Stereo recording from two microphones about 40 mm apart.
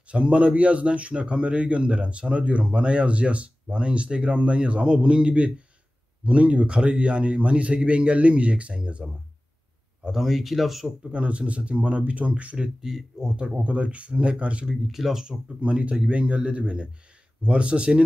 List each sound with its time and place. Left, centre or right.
0.1 s a man's voice: right
10.1 s speech: centre
11.1 s a man's voice: right
12.8 s speech: centre
13.5 s a man's voice: right
14.7 s speech: centre
15.2 s speech: right